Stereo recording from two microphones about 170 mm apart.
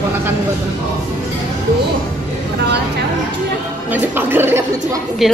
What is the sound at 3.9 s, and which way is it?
Speech, 10° right (ahead or behind).